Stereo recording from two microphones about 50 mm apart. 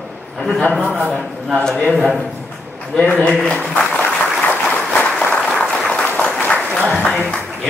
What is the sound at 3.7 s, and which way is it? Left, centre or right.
Applause, left.